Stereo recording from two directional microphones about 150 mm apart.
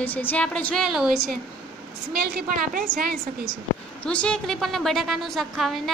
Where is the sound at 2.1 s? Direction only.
90° right.